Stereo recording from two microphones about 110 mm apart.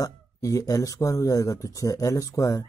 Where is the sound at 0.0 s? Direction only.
30° left (ahead or behind).